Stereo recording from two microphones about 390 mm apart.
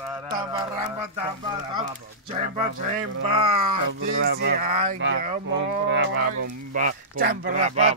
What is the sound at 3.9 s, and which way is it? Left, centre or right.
Speech, right.